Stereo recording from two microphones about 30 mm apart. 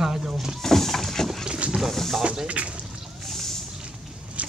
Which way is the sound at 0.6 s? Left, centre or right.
Centre.